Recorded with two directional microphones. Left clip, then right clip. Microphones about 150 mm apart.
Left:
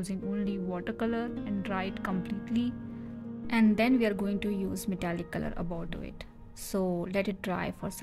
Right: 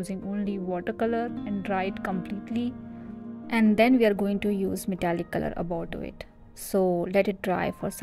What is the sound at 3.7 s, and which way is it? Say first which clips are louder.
A woman's voice: right 7 dB; 30° right (ahead or behind).